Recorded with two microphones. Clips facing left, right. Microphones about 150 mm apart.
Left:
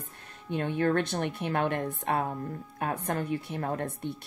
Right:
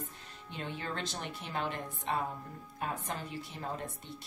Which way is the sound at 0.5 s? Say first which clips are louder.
Left 13 dB; 60° left (ahead or behind).